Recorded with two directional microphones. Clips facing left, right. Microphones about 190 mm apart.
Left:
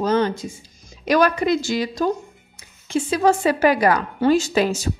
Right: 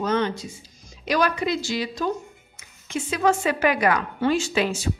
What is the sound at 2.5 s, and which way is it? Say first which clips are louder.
A woman's voice: left 7 dB; 30° left (ahead or behind).